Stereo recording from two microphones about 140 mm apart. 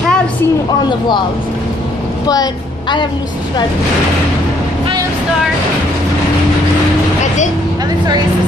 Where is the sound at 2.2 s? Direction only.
30° left (ahead or behind).